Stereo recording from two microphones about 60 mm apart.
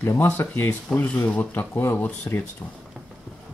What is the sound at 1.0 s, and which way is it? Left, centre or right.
Speech, left.